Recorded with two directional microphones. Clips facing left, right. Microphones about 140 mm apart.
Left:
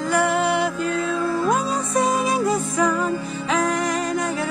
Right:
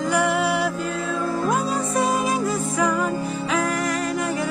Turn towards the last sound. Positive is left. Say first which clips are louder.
# left 1 dB
turn(degrees=-5)  # may be behind; listen again after turning